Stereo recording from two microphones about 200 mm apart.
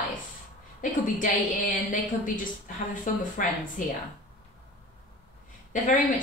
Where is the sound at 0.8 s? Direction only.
40° left (ahead or behind).